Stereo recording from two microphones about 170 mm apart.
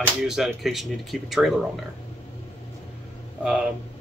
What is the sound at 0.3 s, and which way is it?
A man's voice, centre (ahead or behind).